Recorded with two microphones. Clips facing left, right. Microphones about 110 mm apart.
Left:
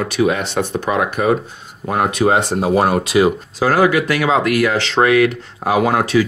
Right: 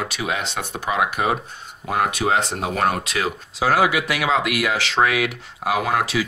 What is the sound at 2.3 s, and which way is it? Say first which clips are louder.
Speech: left 6 dB; 35° left (ahead or behind).